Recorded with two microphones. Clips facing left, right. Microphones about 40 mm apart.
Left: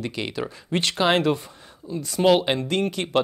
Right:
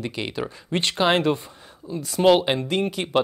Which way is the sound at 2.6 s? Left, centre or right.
Right.